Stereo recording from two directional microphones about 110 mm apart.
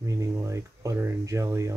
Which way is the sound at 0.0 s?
30° right (ahead or behind).